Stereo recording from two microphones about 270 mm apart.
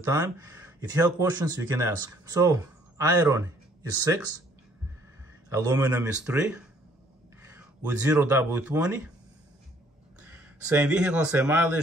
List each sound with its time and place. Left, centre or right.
0.0 s speech: centre
5.5 s speech: centre
10.2 s speech: centre